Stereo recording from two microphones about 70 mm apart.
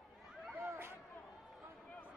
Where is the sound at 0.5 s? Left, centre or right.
Right.